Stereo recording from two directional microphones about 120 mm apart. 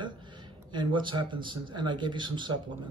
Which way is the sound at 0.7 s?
40° right (ahead or behind).